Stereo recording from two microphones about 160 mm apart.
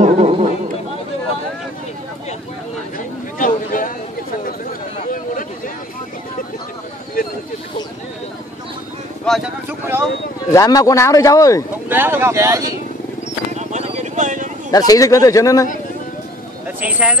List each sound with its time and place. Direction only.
0.0 s a sound: 45° right (ahead or behind)
3.3 s a sound: 55° left (ahead or behind)
4.9 s chatter: 55° left (ahead or behind)
9.2 s vehicle: centre (ahead or behind)
9.7 s a sound: 15° right (ahead or behind)
10.5 s speech: 20° left (ahead or behind)
11.9 s speech: 15° right (ahead or behind)
13.6 s vehicle: 45° right (ahead or behind)
14.7 s speech: 25° left (ahead or behind)
16.8 s speech: 5° right (ahead or behind)